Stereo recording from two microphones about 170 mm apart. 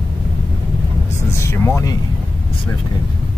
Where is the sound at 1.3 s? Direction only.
15° left (ahead or behind).